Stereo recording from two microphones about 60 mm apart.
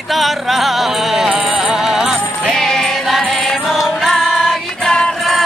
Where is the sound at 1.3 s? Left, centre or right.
Centre.